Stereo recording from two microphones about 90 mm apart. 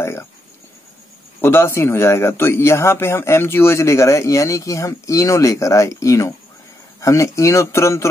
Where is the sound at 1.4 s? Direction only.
25° left (ahead or behind).